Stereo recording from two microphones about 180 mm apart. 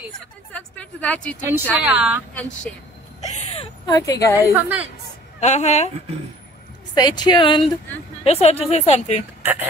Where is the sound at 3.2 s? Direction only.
40° left (ahead or behind).